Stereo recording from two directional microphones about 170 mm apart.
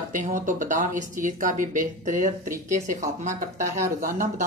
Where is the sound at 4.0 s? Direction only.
55° right (ahead or behind).